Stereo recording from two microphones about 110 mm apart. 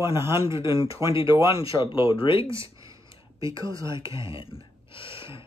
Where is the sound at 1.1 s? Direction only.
55° left (ahead or behind).